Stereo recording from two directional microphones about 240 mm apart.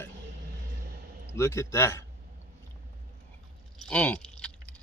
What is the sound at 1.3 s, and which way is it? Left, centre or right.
Speech, centre.